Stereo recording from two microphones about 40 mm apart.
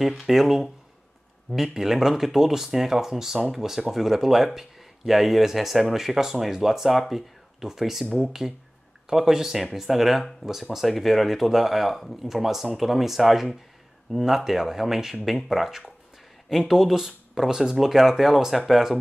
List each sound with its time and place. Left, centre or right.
0.0 s speech: centre